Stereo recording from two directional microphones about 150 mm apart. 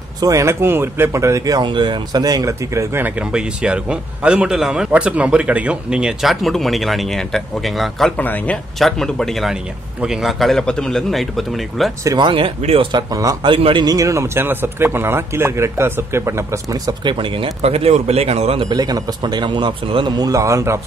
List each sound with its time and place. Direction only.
0.2 s speech: 20° right (ahead or behind); by 8.1 s centre (ahead or behind)
8.2 s a man's voice: 10° left (ahead or behind)
12.0 s speech: 20° right (ahead or behind)
12.3 s speech: 35° right (ahead or behind)
13.1 s speech: 25° right (ahead or behind); by 18.7 s 45° right (ahead or behind)
18.7 s speech: 25° right (ahead or behind)